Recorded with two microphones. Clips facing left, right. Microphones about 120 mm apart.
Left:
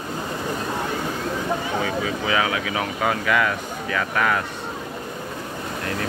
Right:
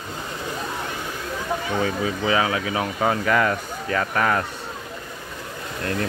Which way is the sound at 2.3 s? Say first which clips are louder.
Right 2 dB; 30° right (ahead or behind).